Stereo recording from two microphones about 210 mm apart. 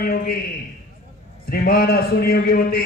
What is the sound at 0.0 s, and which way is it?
Speech, 45° left (ahead or behind).